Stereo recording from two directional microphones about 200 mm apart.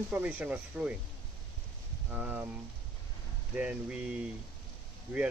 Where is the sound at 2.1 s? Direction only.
10° right (ahead or behind).